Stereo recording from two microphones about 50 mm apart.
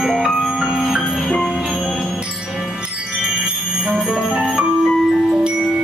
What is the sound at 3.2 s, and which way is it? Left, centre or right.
Music, centre.